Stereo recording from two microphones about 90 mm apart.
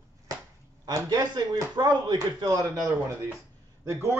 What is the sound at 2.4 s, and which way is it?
Speech, 40° right (ahead or behind).